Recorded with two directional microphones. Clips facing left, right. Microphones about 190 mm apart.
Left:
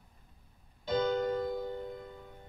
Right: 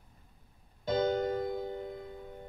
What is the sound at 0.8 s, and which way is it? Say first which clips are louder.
Keyboard: right 1 dB; 50° right (ahead or behind).